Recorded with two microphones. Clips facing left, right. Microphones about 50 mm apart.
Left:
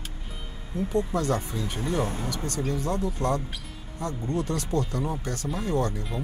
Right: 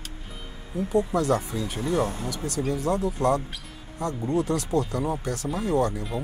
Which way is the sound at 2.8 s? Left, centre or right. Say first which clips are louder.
Right 6 dB; centre.